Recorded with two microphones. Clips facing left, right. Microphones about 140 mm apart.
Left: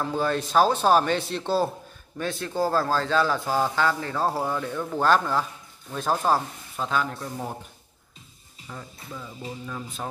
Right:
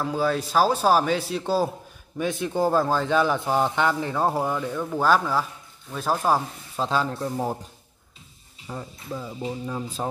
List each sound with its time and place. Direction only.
0.0 s a man's voice: 5° right (ahead or behind)
4.6 s a man's voice: 5° right (ahead or behind)
6.8 s speech: 30° right (ahead or behind)
8.6 s speech: 30° right (ahead or behind)